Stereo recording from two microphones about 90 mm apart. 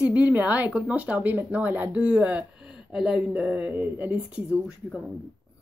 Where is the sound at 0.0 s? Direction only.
15° right (ahead or behind).